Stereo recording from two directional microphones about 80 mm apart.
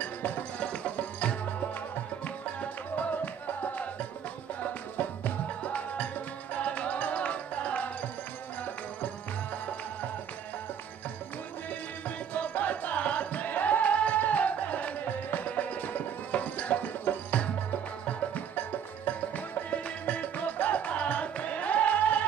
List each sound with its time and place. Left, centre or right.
0.0 s music: left
4.9 s music: centre
12.4 s music: centre